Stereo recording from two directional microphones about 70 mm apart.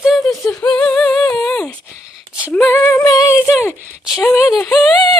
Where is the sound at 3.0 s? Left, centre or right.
Left.